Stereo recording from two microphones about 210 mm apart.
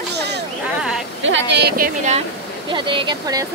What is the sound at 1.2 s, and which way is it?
Speech, 60° right (ahead or behind).